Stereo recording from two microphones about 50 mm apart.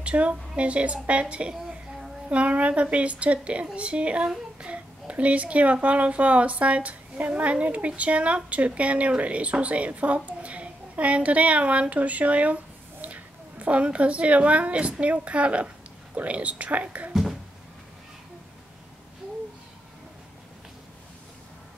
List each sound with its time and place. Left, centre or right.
0.0 s a child's voice: right
2.2 s a child's voice: right
17.1 s a sound: centre